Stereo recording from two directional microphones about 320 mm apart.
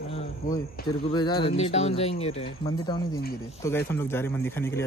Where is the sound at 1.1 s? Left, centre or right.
Centre.